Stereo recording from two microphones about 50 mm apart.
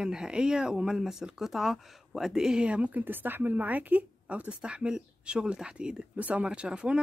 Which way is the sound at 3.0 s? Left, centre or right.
Right.